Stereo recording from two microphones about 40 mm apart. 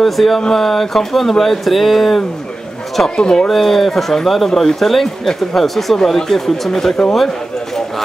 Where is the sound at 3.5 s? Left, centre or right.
Centre.